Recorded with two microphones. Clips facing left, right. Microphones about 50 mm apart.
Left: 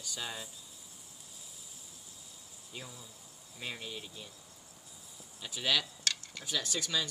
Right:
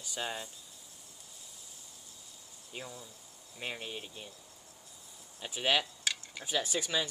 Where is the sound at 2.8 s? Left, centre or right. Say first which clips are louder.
Right 3 dB; centre.